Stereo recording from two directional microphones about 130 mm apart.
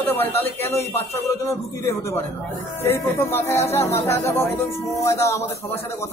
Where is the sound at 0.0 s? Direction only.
15° left (ahead or behind).